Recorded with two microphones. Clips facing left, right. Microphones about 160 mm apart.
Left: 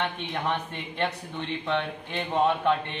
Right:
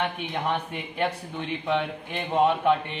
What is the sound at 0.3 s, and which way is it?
Speech, 10° right (ahead or behind).